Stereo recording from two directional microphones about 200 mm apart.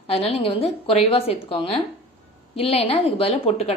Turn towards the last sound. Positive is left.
turn(degrees=30)  # may be behind; listen again after turning